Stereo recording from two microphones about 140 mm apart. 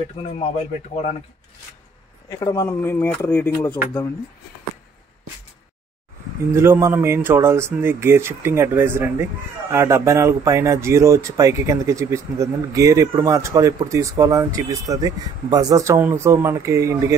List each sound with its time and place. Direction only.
0.6 s speech: 50° left (ahead or behind)
2.2 s speech: 25° left (ahead or behind)
6.5 s speech: 20° right (ahead or behind)